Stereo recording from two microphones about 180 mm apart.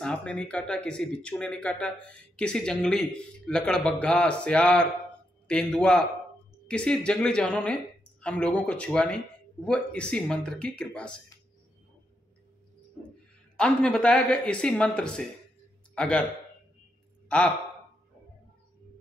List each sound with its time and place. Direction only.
0.0 s speech: 5° left (ahead or behind)
13.6 s speech: 5° left (ahead or behind)
17.3 s speech: 5° left (ahead or behind)